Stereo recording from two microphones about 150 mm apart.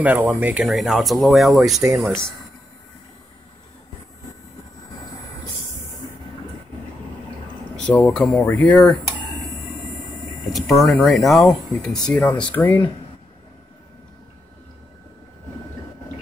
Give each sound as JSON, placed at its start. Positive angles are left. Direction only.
{"t": 0.0, "sound": "speech", "side_deg": -10}
{"t": 7.7, "sound": "speech", "side_deg": 10}
{"t": 10.5, "sound": "speech", "side_deg": 0}